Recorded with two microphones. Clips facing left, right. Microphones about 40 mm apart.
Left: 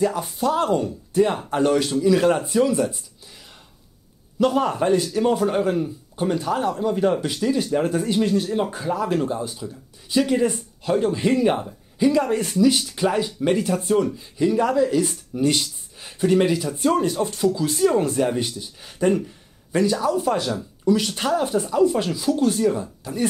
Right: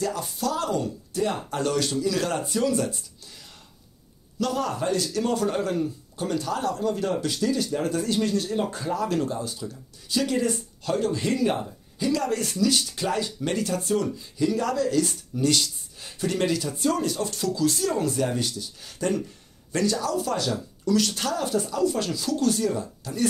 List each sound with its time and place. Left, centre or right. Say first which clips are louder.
0.0 s speech: left 6 dB; left
4.4 s speech: left 7 dB; left